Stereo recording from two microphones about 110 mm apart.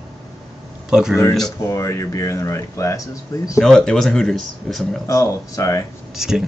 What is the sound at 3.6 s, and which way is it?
Speech, 5° left (ahead or behind).